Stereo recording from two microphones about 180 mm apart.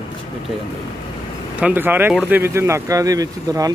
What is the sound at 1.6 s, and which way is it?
Speech, 10° right (ahead or behind).